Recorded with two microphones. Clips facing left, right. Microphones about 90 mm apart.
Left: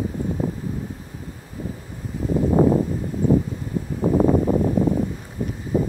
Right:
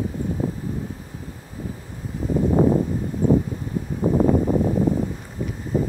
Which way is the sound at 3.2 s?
40° right (ahead or behind).